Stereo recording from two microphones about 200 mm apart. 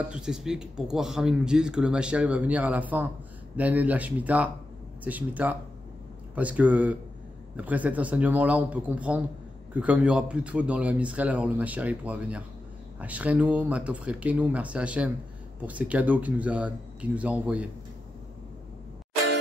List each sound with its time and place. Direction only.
0.1 s speech: 5° right (ahead or behind)